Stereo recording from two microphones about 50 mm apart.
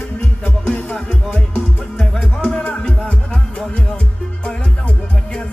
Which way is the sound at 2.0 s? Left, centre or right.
Centre.